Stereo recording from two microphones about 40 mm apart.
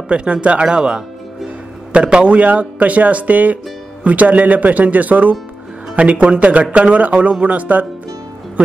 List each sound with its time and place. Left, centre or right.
0.1 s a man's voice: right
2.3 s speech: right